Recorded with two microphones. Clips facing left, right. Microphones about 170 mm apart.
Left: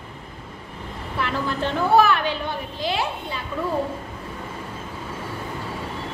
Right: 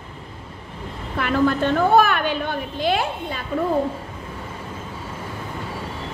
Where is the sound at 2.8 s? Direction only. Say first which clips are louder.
Right 5 dB; 55° right (ahead or behind).